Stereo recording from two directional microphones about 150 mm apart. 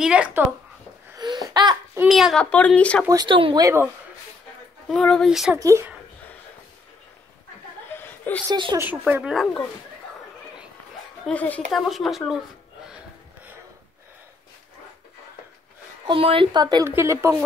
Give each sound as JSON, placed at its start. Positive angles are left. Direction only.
{"t": 0.0, "sound": "speech", "side_deg": -5}
{"t": 1.1, "sound": "a sound", "side_deg": -25}
{"t": 2.0, "sound": "speech", "side_deg": 0}
{"t": 3.1, "sound": "speech", "side_deg": -30}
{"t": 4.8, "sound": "speech", "side_deg": 5}
{"t": 5.6, "sound": "speech", "side_deg": -20}
{"t": 7.9, "sound": "chuckle", "side_deg": 15}
{"t": 8.5, "sound": "speech", "side_deg": -30}
{"t": 8.7, "sound": "speech", "side_deg": -10}
{"t": 11.2, "sound": "speech", "side_deg": 10}
{"t": 16.1, "sound": "speech", "side_deg": -35}